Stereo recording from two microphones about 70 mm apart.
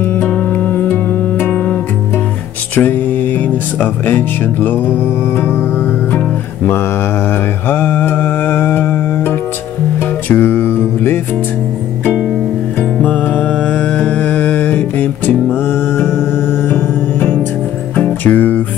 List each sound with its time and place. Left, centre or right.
0.1 s music: left
3.8 s speech: left
6.1 s music: left
10.3 s music: left
13.0 s music: centre